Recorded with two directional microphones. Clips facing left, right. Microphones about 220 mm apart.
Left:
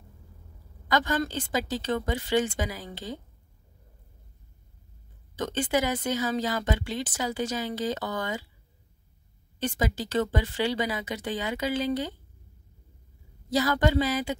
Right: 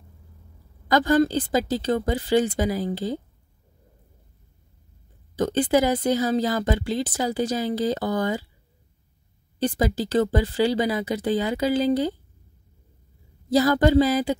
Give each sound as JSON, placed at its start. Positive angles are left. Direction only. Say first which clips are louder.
{"t": 0.8, "sound": "a woman's voice", "louder": "right 8 dB", "side_deg": -35}
{"t": 5.3, "sound": "a woman's voice", "louder": "right 7 dB", "side_deg": -35}
{"t": 9.6, "sound": "a woman's voice", "louder": "right 6 dB", "side_deg": -35}
{"t": 13.5, "sound": "a woman's voice", "louder": "right 6 dB", "side_deg": -35}